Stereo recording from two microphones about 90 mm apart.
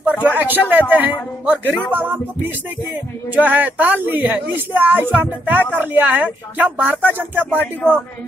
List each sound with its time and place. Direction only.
0.0 s a man's voice: 15° right (ahead or behind)
7.6 s speech: 15° left (ahead or behind)